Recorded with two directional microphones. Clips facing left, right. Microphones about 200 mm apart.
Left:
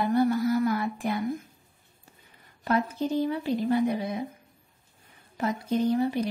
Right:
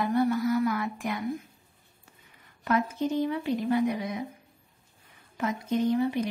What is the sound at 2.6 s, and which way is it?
Speech, 35° left (ahead or behind).